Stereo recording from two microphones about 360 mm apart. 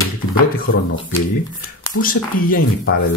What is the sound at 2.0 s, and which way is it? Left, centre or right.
Speech, left.